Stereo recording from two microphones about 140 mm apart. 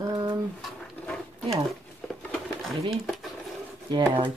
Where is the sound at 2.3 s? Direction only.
Centre (ahead or behind).